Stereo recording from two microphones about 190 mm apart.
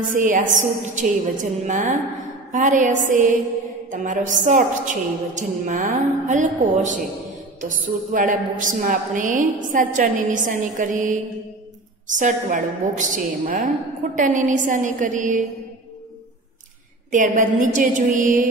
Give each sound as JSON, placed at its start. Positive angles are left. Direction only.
{"t": 0.0, "sound": "a woman's voice", "side_deg": -45}
{"t": 8.1, "sound": "a woman's voice", "side_deg": -45}
{"t": 17.1, "sound": "a woman's voice", "side_deg": -45}